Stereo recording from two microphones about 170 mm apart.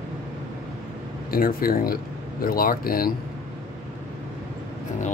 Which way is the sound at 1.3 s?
60° left (ahead or behind).